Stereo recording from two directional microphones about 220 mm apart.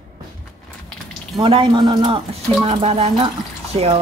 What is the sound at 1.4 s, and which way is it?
A man's voice, 20° right (ahead or behind).